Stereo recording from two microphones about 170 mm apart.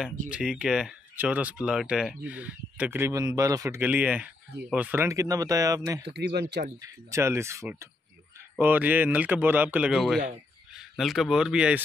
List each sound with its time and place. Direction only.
0.3 s speech: 5° right (ahead or behind)
6.0 s speech: 80° right
6.8 s speech: 15° right (ahead or behind)